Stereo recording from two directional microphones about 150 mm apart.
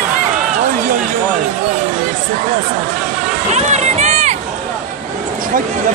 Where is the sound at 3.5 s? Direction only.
50° right (ahead or behind).